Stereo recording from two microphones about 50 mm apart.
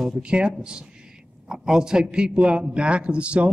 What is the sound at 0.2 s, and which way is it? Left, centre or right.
A man's voice, right.